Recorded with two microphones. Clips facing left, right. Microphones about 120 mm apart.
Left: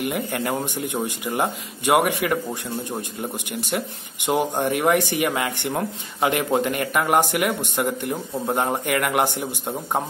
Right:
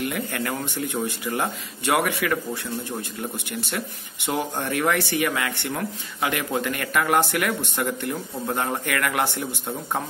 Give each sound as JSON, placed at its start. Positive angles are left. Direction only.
{"t": 0.0, "sound": "speech", "side_deg": 15}
{"t": 4.4, "sound": "speech", "side_deg": 20}